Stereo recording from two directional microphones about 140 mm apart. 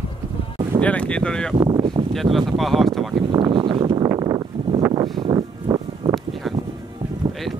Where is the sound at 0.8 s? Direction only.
10° left (ahead or behind).